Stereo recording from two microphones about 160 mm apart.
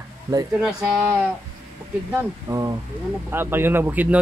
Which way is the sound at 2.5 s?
25° right (ahead or behind).